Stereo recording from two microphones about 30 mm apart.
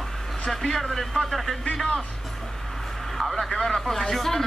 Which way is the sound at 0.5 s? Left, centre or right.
Centre.